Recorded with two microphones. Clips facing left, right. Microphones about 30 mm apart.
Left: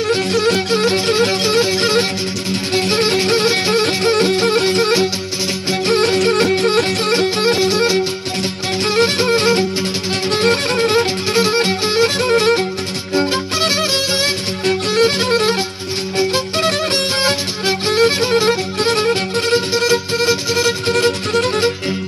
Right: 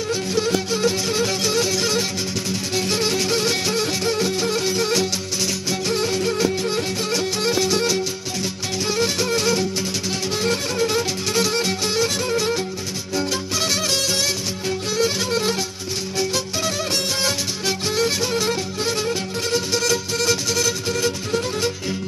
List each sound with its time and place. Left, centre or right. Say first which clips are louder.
0.1 s music: left 5 dB; left
14.7 s music: left 7 dB; left
17.2 s music: left 6 dB; left
19.7 s music: left 6 dB; left
20.9 s music: left 7 dB; left